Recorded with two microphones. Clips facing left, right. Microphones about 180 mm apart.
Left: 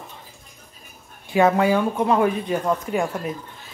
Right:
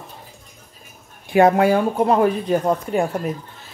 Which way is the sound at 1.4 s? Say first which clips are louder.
Right 3 dB; 40° right (ahead or behind).